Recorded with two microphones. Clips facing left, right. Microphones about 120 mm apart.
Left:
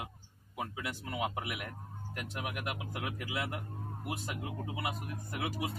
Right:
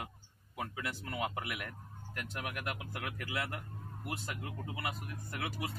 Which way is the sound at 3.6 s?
35° left (ahead or behind).